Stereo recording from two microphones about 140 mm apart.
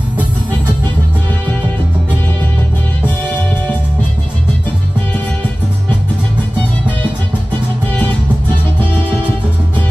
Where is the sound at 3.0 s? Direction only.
10° left (ahead or behind).